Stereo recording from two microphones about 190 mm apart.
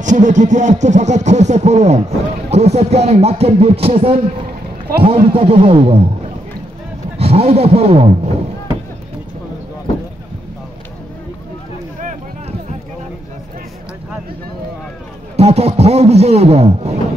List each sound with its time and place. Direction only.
0.0 s music: 40° right (ahead or behind)
7.2 s music: 30° right (ahead or behind)
12.0 s a sound: 40° right (ahead or behind)
15.3 s music: 35° right (ahead or behind)